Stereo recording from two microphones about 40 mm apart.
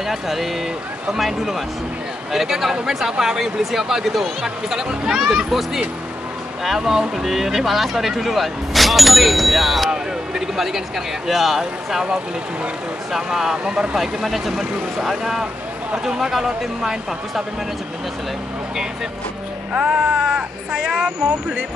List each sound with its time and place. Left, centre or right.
0.0 s speech: centre
9.8 s speech: centre
13.1 s speech: centre
13.9 s speech: centre
19.8 s speech: right